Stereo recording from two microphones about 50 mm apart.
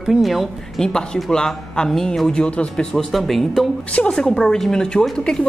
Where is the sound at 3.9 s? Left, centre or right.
Left.